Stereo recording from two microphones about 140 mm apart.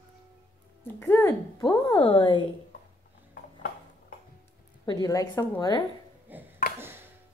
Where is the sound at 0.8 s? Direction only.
15° left (ahead or behind).